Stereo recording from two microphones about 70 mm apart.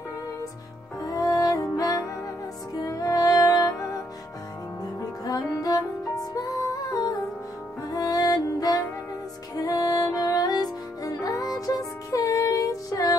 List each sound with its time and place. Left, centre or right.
1.0 s music: left
5.2 s music: left